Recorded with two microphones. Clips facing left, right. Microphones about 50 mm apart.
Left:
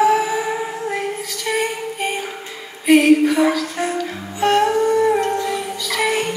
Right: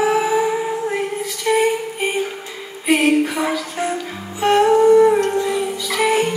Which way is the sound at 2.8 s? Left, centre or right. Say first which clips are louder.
Left 3 dB; centre.